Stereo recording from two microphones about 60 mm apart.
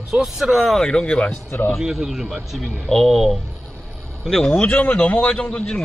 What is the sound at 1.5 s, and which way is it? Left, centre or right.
Speech, left.